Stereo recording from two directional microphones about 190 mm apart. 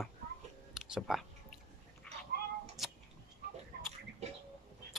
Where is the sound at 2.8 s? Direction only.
Centre (ahead or behind).